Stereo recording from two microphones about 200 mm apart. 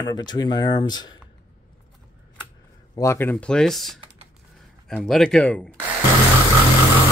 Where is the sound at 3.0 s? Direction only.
10° left (ahead or behind).